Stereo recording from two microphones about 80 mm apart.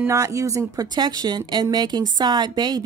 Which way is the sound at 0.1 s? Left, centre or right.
Right.